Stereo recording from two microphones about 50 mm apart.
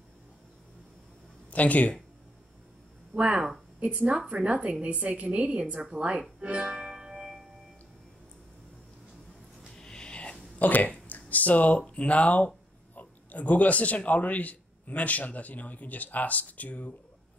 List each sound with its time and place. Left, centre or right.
1.5 s speech: left
3.2 s a woman's voice: right
6.4 s music: right
9.8 s music: centre
10.6 s speech: left